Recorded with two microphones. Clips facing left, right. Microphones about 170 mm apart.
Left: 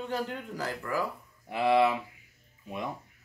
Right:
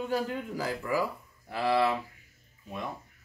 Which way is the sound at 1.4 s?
20° left (ahead or behind).